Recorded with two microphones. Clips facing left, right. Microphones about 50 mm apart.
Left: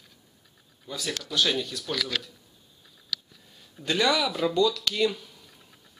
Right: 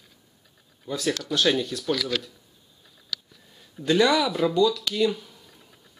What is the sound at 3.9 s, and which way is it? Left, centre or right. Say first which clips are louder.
Speech: right 4 dB; right.